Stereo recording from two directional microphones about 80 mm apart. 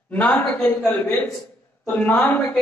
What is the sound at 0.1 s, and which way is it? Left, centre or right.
A man's voice, centre.